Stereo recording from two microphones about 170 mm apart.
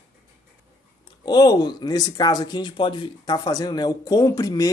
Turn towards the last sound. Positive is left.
turn(degrees=20)  # may be behind; listen again after turning